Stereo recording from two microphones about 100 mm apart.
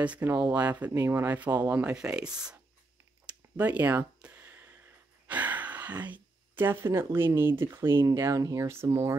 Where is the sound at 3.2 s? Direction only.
15° right (ahead or behind).